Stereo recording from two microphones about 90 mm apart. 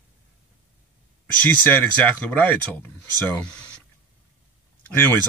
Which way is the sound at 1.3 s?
20° left (ahead or behind).